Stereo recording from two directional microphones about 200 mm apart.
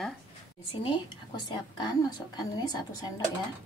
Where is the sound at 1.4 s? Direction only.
20° left (ahead or behind).